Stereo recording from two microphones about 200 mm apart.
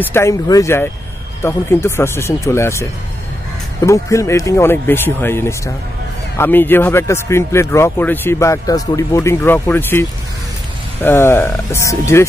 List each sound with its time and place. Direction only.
0.0 s speech: 10° left (ahead or behind)